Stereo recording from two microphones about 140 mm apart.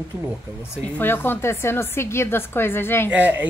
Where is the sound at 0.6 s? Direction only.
15° left (ahead or behind).